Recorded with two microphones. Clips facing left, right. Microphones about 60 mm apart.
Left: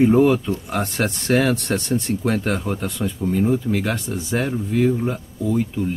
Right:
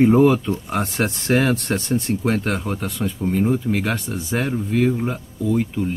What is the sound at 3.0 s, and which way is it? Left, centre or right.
Speech, right.